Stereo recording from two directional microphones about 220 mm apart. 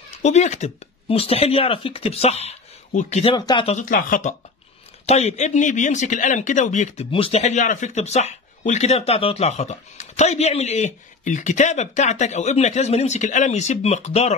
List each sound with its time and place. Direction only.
0.2 s speech: 30° left (ahead or behind)
3.7 s speech: 35° left (ahead or behind)